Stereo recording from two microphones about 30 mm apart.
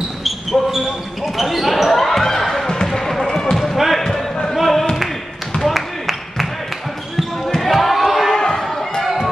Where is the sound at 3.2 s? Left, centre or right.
Left.